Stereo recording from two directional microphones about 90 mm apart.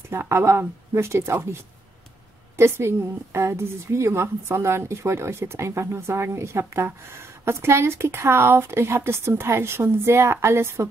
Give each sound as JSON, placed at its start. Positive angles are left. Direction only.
{"t": 0.1, "sound": "a woman's voice", "side_deg": -30}